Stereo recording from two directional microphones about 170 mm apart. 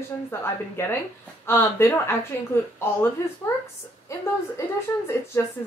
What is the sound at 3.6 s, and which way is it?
Speech, 15° left (ahead or behind).